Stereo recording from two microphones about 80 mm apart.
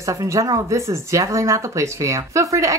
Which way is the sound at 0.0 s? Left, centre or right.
Right.